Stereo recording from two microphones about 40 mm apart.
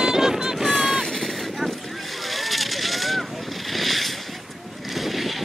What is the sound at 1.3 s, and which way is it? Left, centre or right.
Vehicle, centre.